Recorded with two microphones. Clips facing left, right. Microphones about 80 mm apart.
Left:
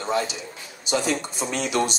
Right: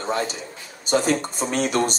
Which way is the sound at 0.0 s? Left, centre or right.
Right.